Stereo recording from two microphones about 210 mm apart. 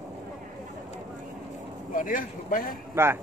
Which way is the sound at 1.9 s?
40° left (ahead or behind).